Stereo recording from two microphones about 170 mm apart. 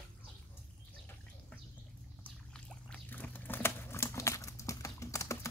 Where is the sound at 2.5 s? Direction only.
10° left (ahead or behind).